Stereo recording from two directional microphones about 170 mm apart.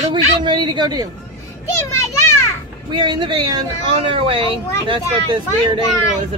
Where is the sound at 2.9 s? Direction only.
30° right (ahead or behind).